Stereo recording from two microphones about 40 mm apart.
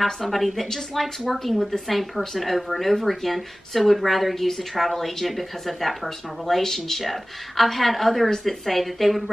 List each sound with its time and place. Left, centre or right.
0.0 s a woman's voice: centre